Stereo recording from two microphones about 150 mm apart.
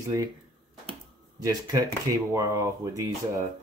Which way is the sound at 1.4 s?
25° right (ahead or behind).